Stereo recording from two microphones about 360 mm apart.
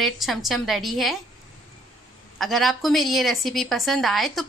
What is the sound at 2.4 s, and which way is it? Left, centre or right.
A woman's voice, centre.